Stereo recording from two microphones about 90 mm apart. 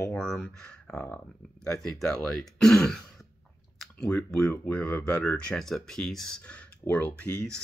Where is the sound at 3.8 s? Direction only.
5° left (ahead or behind).